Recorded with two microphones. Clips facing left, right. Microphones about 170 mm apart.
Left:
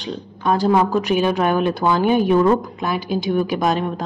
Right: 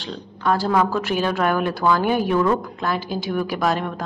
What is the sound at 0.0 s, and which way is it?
A woman's voice, 20° left (ahead or behind).